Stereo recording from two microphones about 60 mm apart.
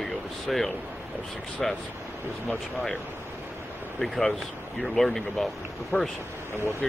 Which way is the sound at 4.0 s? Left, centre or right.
Centre.